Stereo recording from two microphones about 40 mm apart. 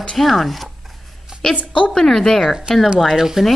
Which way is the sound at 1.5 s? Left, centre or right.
Left.